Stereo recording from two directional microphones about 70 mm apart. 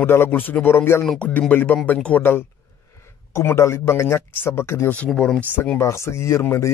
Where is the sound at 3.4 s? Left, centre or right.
Left.